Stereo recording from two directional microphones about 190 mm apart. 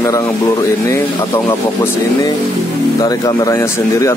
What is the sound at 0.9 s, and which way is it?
Speech, 15° left (ahead or behind).